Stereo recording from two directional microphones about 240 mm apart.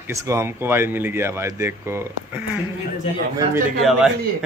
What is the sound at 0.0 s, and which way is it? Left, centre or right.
Speech, centre.